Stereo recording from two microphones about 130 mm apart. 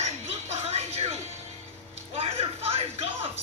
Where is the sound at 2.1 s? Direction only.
50° right (ahead or behind).